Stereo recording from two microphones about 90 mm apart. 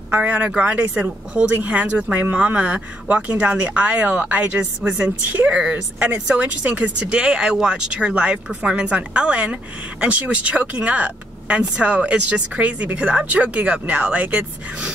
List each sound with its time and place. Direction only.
0.1 s speech: 20° right (ahead or behind)